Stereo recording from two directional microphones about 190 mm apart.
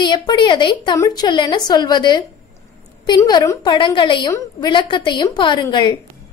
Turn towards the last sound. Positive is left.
turn(degrees=25)  # may be behind; listen again after turning